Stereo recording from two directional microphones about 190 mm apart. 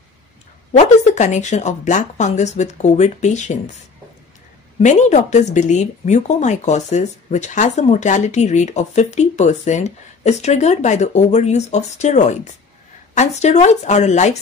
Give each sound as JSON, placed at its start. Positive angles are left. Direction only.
{"t": 0.7, "sound": "speech", "side_deg": 35}
{"t": 4.7, "sound": "speech", "side_deg": 40}